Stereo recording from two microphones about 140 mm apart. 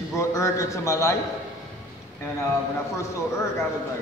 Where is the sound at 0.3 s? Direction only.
20° left (ahead or behind).